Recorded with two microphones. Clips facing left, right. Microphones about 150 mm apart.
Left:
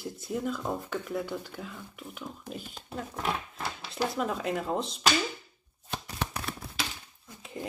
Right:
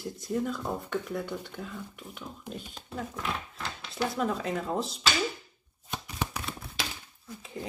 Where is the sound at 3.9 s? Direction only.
Centre (ahead or behind).